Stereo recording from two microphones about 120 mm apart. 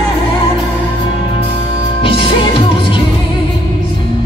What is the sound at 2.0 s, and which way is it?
Music, 45° left (ahead or behind).